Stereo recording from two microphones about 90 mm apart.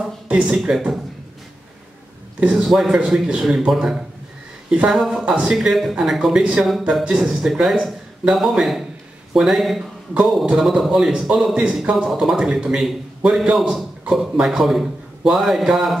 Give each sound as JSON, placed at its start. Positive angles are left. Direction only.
{"t": 0.0, "sound": "speech", "side_deg": -5}
{"t": 2.4, "sound": "a man's voice", "side_deg": -5}